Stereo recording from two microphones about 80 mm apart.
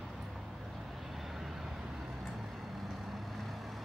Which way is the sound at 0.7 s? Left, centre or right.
Centre.